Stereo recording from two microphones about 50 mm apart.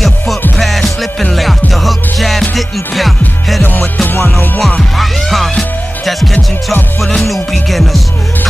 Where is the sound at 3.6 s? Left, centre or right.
Left.